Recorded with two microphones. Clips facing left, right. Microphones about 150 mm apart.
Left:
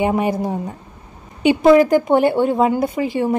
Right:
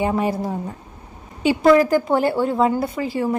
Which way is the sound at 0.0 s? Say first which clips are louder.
Left 3 dB; 15° left (ahead or behind).